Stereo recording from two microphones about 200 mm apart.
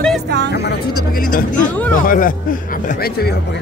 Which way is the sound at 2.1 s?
45° left (ahead or behind).